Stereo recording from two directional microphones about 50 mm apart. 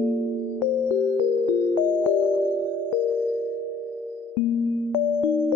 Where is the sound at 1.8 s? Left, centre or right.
Left.